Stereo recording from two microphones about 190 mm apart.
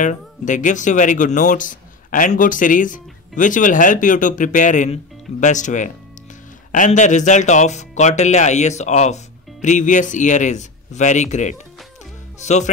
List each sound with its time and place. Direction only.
0.0 s speech: 40° left (ahead or behind)
12.4 s music: 35° left (ahead or behind)